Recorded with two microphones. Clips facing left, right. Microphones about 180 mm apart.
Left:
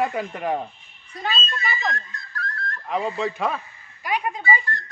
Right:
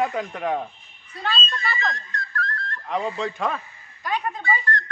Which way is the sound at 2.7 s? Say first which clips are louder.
Left 2 dB; 5° left (ahead or behind).